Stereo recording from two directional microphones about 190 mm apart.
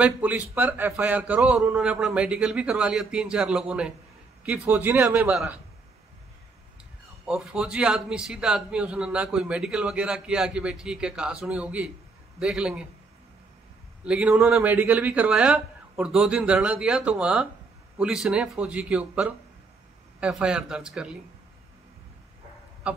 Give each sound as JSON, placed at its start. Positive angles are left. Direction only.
{"t": 0.0, "sound": "a man's voice", "side_deg": -10}
{"t": 7.2, "sound": "a man's voice", "side_deg": -5}
{"t": 14.0, "sound": "a man's voice", "side_deg": -5}
{"t": 22.8, "sound": "a man's voice", "side_deg": -5}